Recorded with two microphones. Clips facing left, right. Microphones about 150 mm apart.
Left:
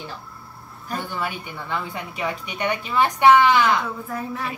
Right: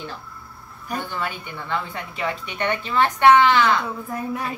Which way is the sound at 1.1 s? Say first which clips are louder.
Even; 10° left (ahead or behind).